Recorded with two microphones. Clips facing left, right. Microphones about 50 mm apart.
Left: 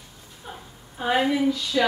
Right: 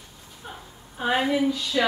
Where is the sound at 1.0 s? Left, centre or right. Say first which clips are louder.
Left 1 dB; centre.